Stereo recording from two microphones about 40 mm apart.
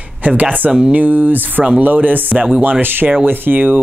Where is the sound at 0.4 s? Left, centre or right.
Right.